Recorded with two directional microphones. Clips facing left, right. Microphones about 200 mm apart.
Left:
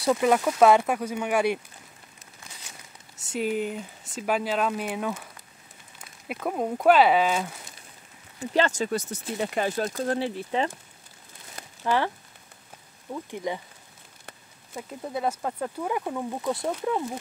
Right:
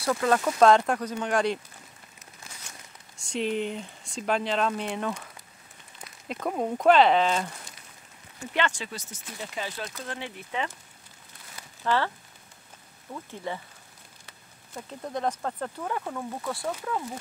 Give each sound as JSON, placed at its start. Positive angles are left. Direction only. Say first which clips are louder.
{"t": 0.0, "sound": "speech", "louder": "left 3 dB", "side_deg": 15}
{"t": 3.3, "sound": "speech", "louder": "left 1 dB", "side_deg": 5}
{"t": 8.5, "sound": "speech", "louder": "left 6 dB", "side_deg": 40}
{"t": 9.4, "sound": "speech", "louder": "left 9 dB", "side_deg": 55}
{"t": 11.8, "sound": "speech", "louder": "left 1 dB", "side_deg": 15}
{"t": 13.1, "sound": "speech", "louder": "left 4 dB", "side_deg": 15}
{"t": 14.7, "sound": "speech", "louder": "left 1 dB", "side_deg": 10}